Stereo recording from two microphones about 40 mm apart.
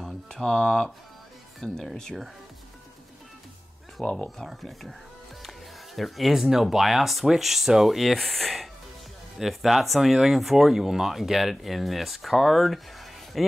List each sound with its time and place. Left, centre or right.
0.0 s a sound: centre
1.6 s speech: centre
4.2 s speech: centre
8.2 s speech: centre
9.4 s speech: centre